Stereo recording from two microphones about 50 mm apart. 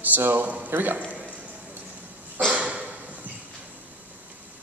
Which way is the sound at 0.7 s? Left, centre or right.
Right.